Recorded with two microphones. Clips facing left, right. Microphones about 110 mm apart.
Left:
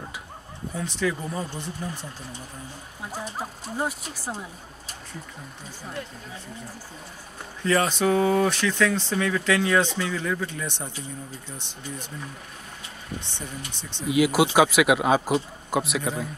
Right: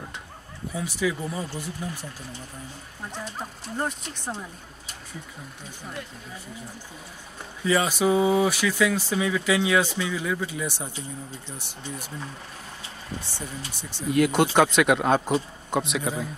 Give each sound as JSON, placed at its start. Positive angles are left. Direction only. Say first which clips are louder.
{"t": 0.7, "sound": "speech", "louder": "even", "side_deg": -5}
{"t": 3.0, "sound": "speech", "louder": "left 2 dB", "side_deg": 5}
{"t": 7.6, "sound": "speech", "louder": "even", "side_deg": -5}
{"t": 13.1, "sound": "speech", "louder": "even", "side_deg": -30}
{"t": 13.7, "sound": "speech", "louder": "even", "side_deg": -10}
{"t": 14.0, "sound": "speech", "louder": "even", "side_deg": 5}